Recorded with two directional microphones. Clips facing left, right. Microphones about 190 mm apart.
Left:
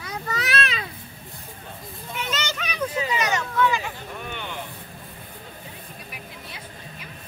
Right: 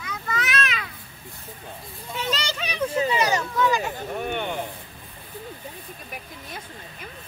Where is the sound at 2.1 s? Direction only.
30° right (ahead or behind); by 4.6 s 50° right (ahead or behind).